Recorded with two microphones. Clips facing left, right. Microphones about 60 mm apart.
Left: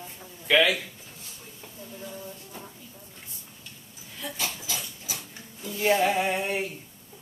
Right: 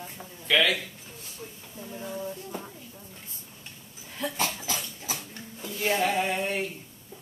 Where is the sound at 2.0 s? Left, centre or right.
Right.